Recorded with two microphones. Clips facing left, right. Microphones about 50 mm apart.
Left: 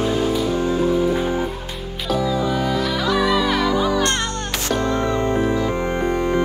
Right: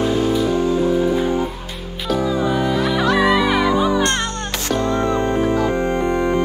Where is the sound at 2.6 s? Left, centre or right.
Right.